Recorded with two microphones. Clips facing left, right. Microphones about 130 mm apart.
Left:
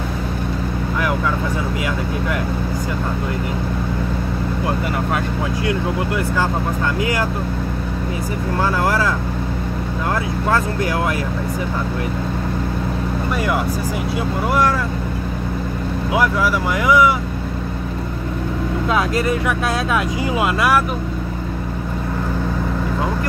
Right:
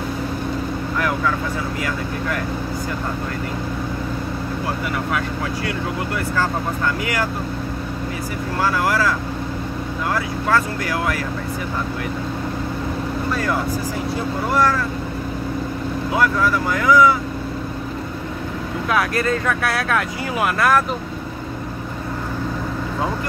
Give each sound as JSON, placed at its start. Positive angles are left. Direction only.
{"t": 5.7, "sound": "speech", "side_deg": 15}
{"t": 8.5, "sound": "speech", "side_deg": 25}
{"t": 10.5, "sound": "speech", "side_deg": 20}
{"t": 16.1, "sound": "speech", "side_deg": 15}
{"t": 18.9, "sound": "speech", "side_deg": 20}